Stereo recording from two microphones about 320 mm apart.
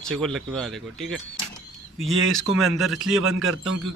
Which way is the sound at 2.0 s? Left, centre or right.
Right.